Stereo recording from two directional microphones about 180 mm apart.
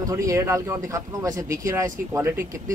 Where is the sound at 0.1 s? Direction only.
15° right (ahead or behind).